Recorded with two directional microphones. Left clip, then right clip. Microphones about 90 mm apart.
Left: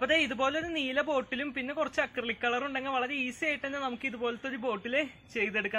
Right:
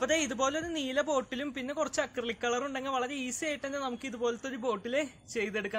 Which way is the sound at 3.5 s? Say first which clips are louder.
Left 1 dB; 25° right (ahead or behind).